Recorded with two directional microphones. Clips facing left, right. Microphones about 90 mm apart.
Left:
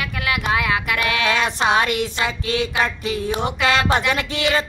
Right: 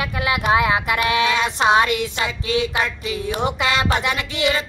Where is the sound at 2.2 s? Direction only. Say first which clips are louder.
Right 1 dB; 35° left (ahead or behind).